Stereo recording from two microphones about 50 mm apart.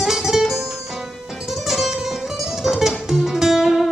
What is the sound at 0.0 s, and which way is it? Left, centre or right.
Music, centre.